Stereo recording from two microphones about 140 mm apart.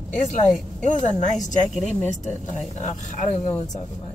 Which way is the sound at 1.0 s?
60° left (ahead or behind).